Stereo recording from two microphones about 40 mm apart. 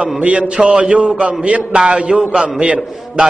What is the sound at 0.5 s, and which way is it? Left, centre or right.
Speech, right.